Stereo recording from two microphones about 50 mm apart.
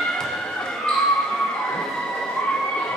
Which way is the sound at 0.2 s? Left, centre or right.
Centre.